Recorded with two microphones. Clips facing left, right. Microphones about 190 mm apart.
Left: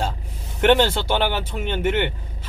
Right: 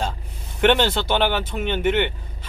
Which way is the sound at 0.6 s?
10° left (ahead or behind).